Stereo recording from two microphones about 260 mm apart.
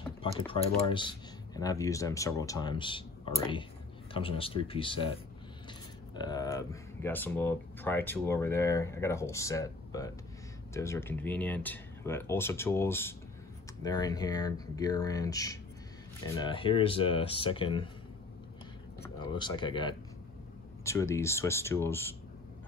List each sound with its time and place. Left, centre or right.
0.5 s speech: centre
19.3 s speech: centre